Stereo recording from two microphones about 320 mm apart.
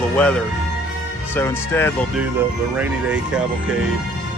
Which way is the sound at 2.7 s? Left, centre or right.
Centre.